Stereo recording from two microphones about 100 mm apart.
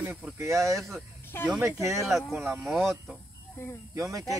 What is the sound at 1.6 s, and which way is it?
Speech, 30° right (ahead or behind).